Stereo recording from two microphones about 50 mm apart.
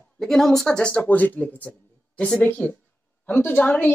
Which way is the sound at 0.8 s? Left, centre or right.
Left.